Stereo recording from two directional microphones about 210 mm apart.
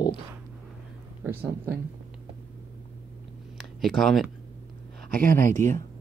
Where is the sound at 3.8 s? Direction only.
Centre (ahead or behind).